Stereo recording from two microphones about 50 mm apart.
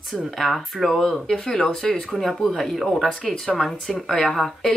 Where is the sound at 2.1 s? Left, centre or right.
Centre.